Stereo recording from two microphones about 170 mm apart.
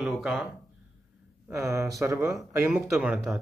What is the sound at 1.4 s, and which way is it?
Speech, 15° right (ahead or behind).